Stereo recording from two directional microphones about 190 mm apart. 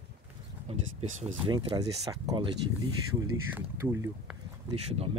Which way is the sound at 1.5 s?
25° right (ahead or behind).